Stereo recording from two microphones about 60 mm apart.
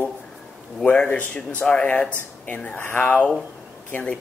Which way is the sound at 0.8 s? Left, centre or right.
Left.